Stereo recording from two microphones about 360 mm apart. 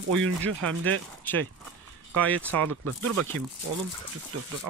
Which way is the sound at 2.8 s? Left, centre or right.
Right.